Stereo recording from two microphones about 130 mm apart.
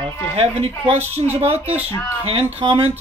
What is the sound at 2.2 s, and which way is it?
Speech, 50° right (ahead or behind).